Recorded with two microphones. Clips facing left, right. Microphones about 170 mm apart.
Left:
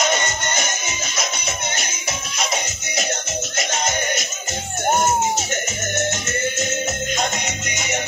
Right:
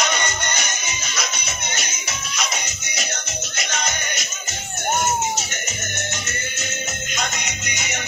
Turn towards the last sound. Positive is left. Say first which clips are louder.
# left 4 dB
turn(degrees=50)  # may be behind; listen again after turning